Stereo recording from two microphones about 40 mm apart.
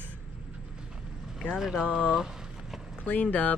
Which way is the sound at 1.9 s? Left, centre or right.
Right.